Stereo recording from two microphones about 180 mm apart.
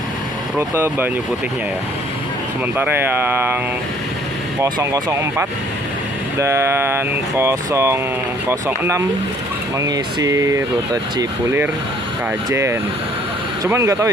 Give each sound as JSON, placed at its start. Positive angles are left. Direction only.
{"t": 0.6, "sound": "speech", "side_deg": -15}
{"t": 2.8, "sound": "speech", "side_deg": -10}
{"t": 4.6, "sound": "speech", "side_deg": -20}